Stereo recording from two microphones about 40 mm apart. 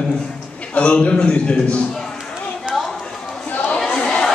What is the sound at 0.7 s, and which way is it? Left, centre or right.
A man's voice, left.